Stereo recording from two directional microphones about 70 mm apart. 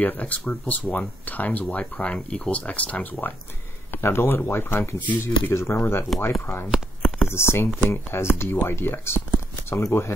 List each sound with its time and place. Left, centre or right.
0.0 s speech: left
3.9 s speech: left
5.5 s speech: left